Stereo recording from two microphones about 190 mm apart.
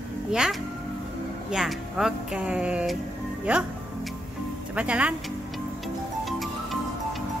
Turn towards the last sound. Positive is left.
turn(degrees=0)  # may be behind; listen again after turning